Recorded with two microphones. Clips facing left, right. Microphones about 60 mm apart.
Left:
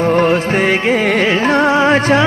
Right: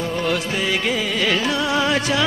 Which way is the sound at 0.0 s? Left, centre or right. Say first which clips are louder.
Left 10 dB; left.